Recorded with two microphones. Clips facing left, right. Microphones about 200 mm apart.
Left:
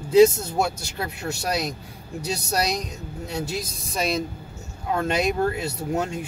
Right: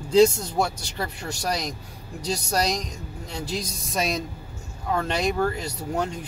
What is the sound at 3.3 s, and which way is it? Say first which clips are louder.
Speech: left 1 dB; 5° left (ahead or behind).